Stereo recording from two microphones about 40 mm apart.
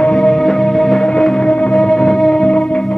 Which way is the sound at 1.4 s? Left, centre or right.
Left.